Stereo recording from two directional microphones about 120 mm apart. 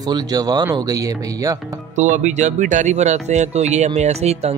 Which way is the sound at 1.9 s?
90° right.